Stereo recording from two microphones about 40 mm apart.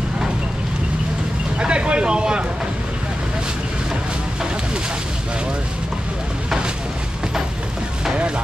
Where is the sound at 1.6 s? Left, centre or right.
Right.